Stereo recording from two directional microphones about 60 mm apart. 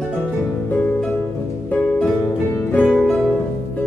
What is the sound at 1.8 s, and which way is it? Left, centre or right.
Music, centre.